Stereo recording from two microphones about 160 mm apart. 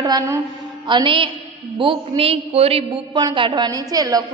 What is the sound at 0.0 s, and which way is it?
A woman's voice, 20° right (ahead or behind).